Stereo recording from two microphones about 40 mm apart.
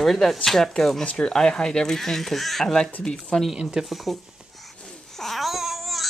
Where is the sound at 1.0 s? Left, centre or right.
Left.